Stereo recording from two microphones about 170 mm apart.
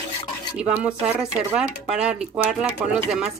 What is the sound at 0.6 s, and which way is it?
A woman's voice, 5° right (ahead or behind).